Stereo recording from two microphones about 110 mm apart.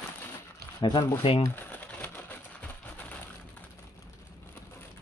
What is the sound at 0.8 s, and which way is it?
Speech, 45° left (ahead or behind).